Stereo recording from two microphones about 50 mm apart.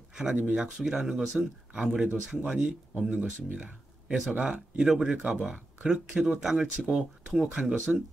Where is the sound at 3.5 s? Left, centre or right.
Right.